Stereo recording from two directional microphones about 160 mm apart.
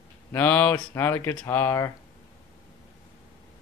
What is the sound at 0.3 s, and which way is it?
Speech, 10° left (ahead or behind).